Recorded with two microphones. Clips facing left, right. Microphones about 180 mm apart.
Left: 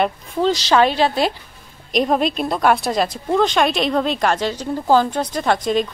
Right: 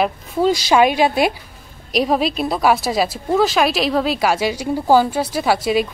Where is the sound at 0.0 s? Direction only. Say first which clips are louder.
Right 1 dB; 10° right (ahead or behind).